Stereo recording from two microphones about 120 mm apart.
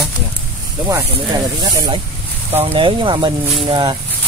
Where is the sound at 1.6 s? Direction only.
35° right (ahead or behind).